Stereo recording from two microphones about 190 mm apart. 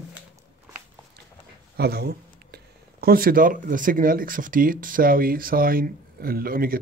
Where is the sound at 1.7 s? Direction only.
55° right (ahead or behind).